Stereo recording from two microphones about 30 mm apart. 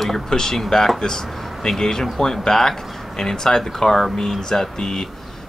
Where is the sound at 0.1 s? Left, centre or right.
Centre.